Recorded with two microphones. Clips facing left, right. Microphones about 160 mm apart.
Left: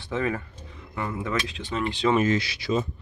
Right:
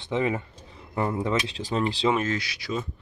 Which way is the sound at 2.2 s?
25° left (ahead or behind).